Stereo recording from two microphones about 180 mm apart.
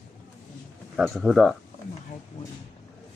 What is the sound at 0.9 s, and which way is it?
Mantra, centre (ahead or behind).